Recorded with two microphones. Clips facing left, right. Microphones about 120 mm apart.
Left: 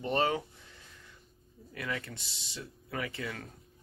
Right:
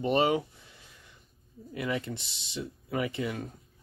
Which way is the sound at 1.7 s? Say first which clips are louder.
Right 6 dB; 20° right (ahead or behind).